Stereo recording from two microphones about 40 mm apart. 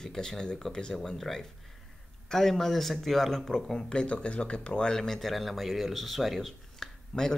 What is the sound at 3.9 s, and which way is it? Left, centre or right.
Speech, left.